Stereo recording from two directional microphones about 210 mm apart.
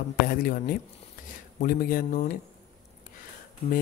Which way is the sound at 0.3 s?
45° left (ahead or behind).